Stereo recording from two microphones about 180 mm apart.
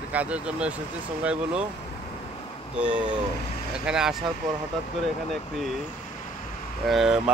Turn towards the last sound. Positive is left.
turn(degrees=-5)  # may be behind; listen again after turning